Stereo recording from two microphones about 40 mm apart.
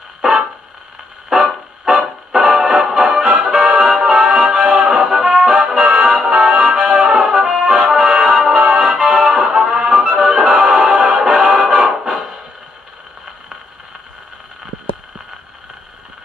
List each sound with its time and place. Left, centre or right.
0.2 s a sound: centre
1.3 s music: centre
7.2 s brass instrument: centre
8.0 s music: right